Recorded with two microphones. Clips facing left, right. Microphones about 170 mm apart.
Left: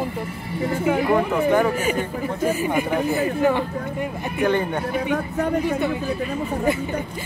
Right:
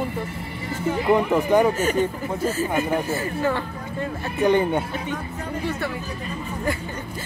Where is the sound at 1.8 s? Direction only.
10° left (ahead or behind).